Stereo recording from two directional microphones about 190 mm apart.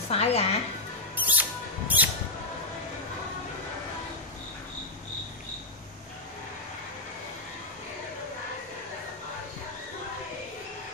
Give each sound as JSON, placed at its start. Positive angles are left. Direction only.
{"t": 0.1, "sound": "a woman's voice", "side_deg": 35}
{"t": 1.1, "sound": "mouse", "side_deg": -10}